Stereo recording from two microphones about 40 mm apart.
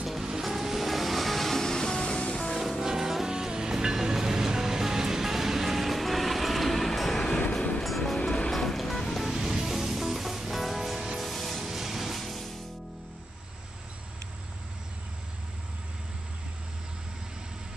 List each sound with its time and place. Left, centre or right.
0.0 s music: centre; by 2.5 s left
2.8 s music: centre
7.2 s train: left
7.8 s music: centre
9.2 s music: centre